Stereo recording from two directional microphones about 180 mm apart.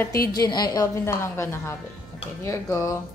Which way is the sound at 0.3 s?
20° left (ahead or behind).